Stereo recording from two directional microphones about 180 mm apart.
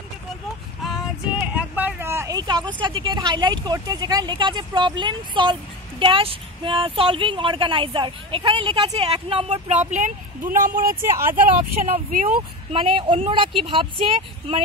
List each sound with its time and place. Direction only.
0.8 s speech: 5° right (ahead or behind); by 10.9 s 50° right (ahead or behind)
11.0 s speech: 15° right (ahead or behind)
11.8 s speech: 50° right (ahead or behind)
12.7 s speech: 30° right (ahead or behind)